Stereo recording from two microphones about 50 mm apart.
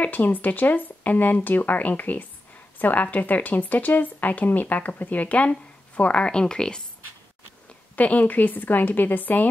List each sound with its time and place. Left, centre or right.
0.0 s speech: left; by 6.8 s centre
7.9 s speech: left